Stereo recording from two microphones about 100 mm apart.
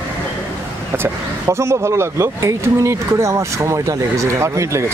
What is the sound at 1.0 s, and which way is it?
Speech, 25° right (ahead or behind).